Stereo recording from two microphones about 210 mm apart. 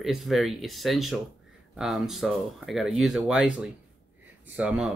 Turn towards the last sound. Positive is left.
turn(degrees=-5)  # may be behind; listen again after turning